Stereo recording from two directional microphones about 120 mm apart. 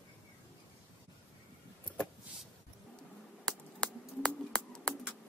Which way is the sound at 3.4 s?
5° left (ahead or behind).